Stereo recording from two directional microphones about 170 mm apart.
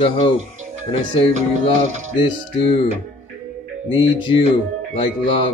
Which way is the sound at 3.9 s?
30° left (ahead or behind).